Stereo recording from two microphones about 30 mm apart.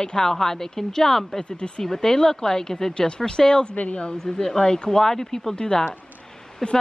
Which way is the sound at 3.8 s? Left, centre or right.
Left.